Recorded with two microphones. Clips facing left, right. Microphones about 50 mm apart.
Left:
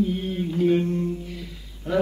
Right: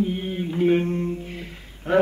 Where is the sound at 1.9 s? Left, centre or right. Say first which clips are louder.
Right 4 dB; right.